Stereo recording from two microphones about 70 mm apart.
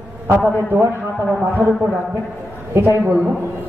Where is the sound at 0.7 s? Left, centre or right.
Right.